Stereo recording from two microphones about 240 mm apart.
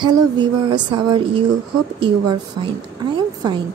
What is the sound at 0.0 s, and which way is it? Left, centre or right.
A woman's voice, centre.